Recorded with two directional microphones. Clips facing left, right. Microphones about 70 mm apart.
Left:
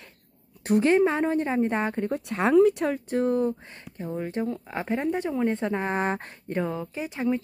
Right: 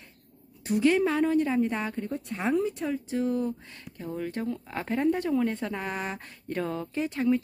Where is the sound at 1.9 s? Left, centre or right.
Left.